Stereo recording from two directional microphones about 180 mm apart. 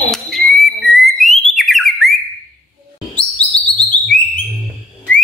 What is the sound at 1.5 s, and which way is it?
Theremin, centre (ahead or behind).